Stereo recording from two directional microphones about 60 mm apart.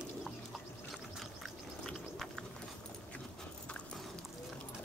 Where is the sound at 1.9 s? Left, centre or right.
Centre.